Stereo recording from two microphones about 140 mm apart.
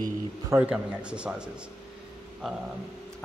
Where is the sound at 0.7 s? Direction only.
5° right (ahead or behind).